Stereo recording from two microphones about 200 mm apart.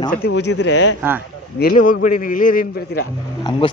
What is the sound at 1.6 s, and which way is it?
A man's voice, 40° left (ahead or behind).